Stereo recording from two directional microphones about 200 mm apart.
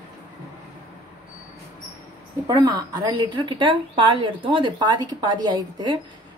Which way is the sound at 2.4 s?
20° right (ahead or behind).